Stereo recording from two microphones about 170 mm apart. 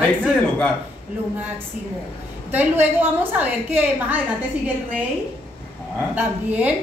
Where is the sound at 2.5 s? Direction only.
10° right (ahead or behind).